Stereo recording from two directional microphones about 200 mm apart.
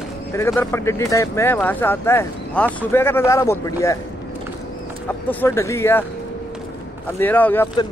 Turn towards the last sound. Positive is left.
turn(degrees=10)  # may be behind; listen again after turning